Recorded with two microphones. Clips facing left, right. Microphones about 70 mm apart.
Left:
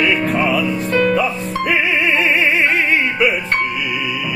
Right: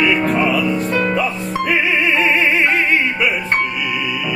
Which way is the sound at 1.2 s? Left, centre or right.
Centre.